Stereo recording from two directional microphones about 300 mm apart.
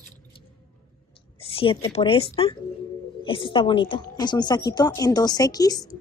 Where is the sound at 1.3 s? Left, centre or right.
Centre.